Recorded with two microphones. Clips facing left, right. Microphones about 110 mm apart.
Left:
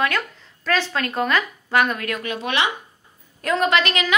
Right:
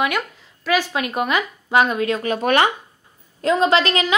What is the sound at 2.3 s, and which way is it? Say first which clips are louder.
Speech: right 6 dB; 45° right (ahead or behind).